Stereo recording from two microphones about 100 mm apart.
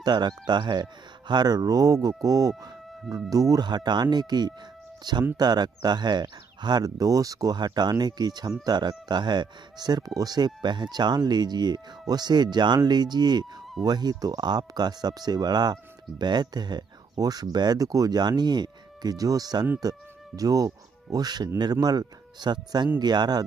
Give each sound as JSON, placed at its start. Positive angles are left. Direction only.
{"t": 0.0, "sound": "speech", "side_deg": -45}